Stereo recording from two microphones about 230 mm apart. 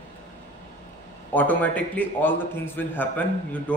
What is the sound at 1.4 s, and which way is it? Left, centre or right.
A man's voice, centre.